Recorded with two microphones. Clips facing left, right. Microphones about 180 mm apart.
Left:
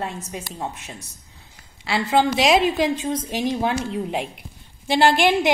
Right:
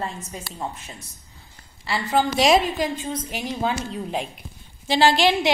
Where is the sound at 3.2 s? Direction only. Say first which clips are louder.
Left 4 dB; 15° left (ahead or behind).